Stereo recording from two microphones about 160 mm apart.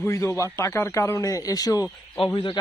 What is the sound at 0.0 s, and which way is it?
Speech, 20° left (ahead or behind).